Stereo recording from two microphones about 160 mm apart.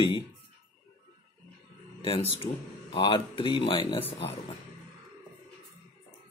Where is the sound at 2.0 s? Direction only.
35° left (ahead or behind).